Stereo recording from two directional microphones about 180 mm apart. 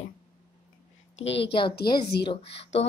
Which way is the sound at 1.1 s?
80° left.